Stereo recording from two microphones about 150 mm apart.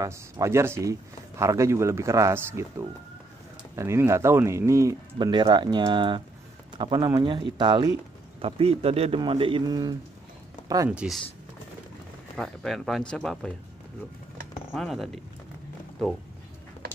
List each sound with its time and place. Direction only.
0.0 s a man's voice: 20° right (ahead or behind)
10.9 s speech: 5° right (ahead or behind)
12.4 s speech: centre (ahead or behind)
14.7 s speech: centre (ahead or behind)